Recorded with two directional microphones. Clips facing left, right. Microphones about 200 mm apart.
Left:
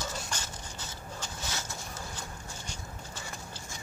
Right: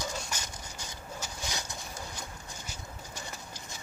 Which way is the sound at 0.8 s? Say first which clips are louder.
Right 1 dB; 15° right (ahead or behind).